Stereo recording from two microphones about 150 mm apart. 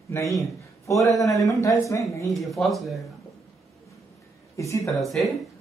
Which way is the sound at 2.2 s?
Centre (ahead or behind).